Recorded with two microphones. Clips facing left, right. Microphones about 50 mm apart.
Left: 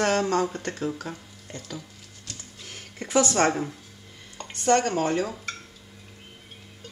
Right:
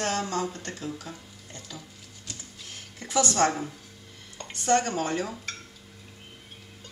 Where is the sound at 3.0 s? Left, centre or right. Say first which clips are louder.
Left 2 dB; left.